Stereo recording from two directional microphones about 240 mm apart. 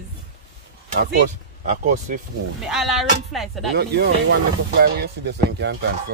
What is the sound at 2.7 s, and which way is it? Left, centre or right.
Speech, centre.